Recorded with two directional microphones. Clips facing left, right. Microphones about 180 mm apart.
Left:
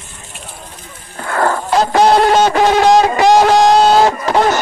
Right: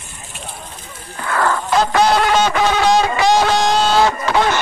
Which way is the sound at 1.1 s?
40° left (ahead or behind).